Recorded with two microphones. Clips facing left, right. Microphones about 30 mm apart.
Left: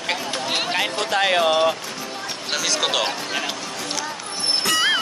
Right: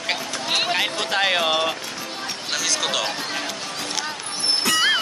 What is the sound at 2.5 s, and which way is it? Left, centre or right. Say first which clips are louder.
Speech: left 2 dB; centre.